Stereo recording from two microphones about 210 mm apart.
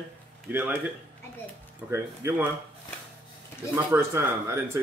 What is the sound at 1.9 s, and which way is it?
Speech, 10° right (ahead or behind).